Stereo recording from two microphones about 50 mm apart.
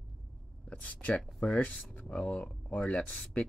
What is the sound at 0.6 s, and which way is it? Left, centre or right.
Speech, left.